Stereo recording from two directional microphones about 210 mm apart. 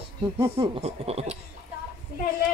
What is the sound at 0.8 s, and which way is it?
Speech, 30° right (ahead or behind).